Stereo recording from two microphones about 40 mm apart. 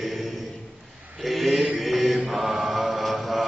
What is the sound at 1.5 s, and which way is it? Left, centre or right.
Mantra, right.